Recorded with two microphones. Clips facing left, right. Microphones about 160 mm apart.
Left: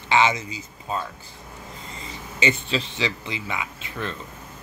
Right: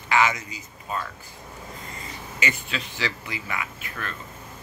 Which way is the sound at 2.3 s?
25° left (ahead or behind).